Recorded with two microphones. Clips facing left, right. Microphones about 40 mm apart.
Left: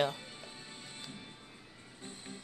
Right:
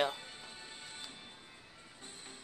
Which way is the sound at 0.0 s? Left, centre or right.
Centre.